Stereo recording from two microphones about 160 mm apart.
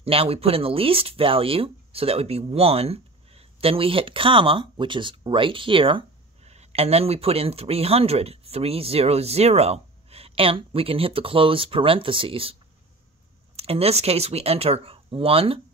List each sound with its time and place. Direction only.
0.0 s speech: 35° right (ahead or behind)
13.6 s speech: 40° right (ahead or behind)